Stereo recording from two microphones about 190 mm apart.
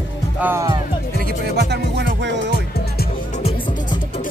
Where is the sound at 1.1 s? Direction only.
55° right (ahead or behind).